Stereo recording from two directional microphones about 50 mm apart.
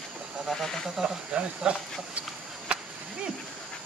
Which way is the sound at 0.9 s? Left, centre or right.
Centre.